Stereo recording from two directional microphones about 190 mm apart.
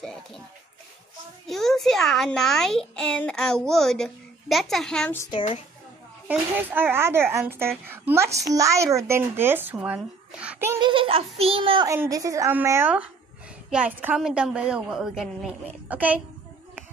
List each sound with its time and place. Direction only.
0.0 s a child's voice: centre (ahead or behind)
1.5 s a child's voice: centre (ahead or behind)
6.2 s a woman's voice: 10° right (ahead or behind)
10.8 s a child's voice: 25° right (ahead or behind)
11.9 s a woman's voice: 15° right (ahead or behind)